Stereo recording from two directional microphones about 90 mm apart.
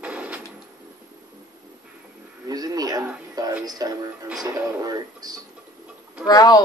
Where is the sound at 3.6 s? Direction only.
45° right (ahead or behind).